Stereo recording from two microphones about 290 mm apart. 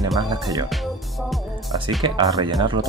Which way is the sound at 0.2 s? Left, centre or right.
Centre.